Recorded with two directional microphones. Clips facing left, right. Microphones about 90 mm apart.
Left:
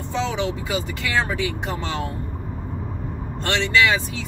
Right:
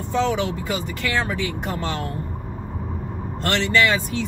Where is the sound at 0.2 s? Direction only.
Centre (ahead or behind).